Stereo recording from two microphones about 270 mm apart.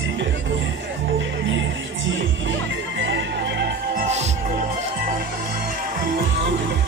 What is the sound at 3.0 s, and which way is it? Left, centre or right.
Music, right.